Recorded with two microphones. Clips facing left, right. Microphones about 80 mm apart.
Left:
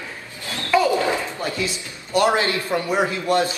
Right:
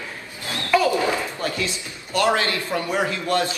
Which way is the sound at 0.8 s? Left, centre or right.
Left.